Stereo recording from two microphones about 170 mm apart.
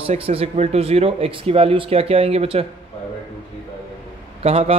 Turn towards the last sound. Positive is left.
turn(degrees=-35)  # may be behind; listen again after turning